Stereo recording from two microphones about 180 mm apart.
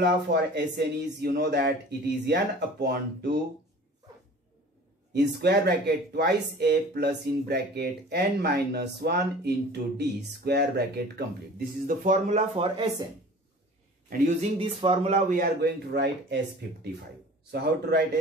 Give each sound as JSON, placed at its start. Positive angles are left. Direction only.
{"t": 0.0, "sound": "speech", "side_deg": -65}
{"t": 5.1, "sound": "speech", "side_deg": -65}
{"t": 14.0, "sound": "speech", "side_deg": -50}
{"t": 14.6, "sound": "speech", "side_deg": -30}
{"t": 15.3, "sound": "speech", "side_deg": -60}
{"t": 17.5, "sound": "speech", "side_deg": -60}